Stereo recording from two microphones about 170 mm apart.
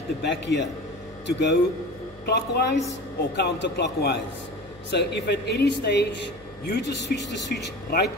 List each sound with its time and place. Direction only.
0.2 s a man's voice: 90° left
2.2 s a woman's voice: 75° left (ahead or behind)
3.3 s speech: 90° left